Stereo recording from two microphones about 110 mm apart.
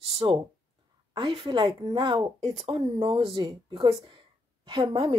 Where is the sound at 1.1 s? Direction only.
50° right (ahead or behind).